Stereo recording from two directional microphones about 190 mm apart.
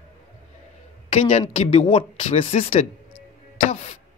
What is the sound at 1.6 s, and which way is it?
Speech, 30° left (ahead or behind).